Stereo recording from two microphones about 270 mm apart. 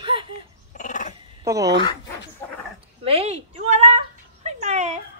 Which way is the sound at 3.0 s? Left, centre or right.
Right.